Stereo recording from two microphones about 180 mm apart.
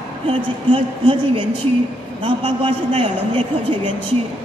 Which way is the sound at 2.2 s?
30° right (ahead or behind).